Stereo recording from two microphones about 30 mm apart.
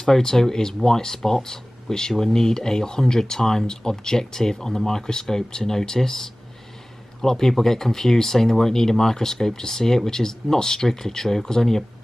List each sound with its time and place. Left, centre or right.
0.0 s speech: centre